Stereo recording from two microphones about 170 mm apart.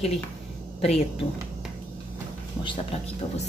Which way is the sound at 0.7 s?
35° left (ahead or behind).